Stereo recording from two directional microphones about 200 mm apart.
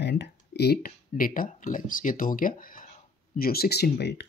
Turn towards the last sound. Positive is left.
turn(degrees=55)  # may be behind; listen again after turning